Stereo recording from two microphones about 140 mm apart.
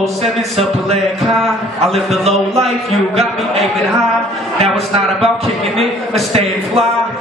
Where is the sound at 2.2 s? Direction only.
50° right (ahead or behind).